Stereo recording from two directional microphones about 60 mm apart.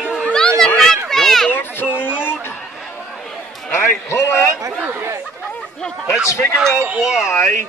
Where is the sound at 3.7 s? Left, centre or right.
Left.